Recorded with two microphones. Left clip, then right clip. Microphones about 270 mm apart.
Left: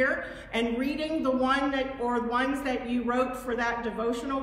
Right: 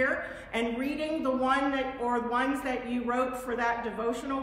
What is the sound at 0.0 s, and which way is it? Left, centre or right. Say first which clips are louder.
A woman's voice: left 2 dB; centre.